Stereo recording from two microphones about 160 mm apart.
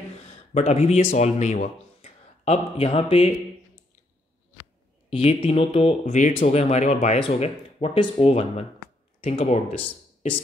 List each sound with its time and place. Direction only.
0.2 s speech: 40° left (ahead or behind)
5.1 s speech: 35° left (ahead or behind)